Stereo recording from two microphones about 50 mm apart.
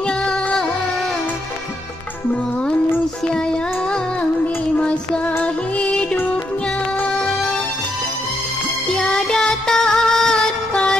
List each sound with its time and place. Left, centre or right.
0.2 s music: centre
4.7 s music: left
9.1 s music: centre
10.7 s a sound: left